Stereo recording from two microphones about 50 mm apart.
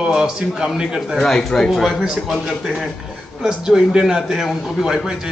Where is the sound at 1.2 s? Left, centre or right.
Centre.